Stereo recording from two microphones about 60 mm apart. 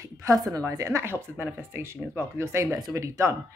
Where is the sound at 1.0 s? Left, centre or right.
Right.